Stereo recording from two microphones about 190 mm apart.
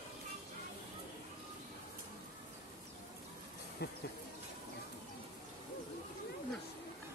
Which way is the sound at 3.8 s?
60° left (ahead or behind).